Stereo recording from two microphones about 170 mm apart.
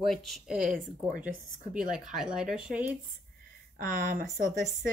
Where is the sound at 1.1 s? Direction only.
50° right (ahead or behind).